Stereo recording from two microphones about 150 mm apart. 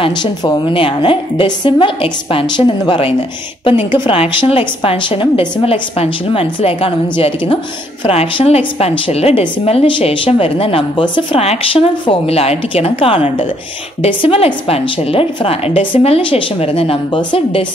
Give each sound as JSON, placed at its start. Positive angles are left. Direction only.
{"t": 0.0, "sound": "a woman's voice", "side_deg": 30}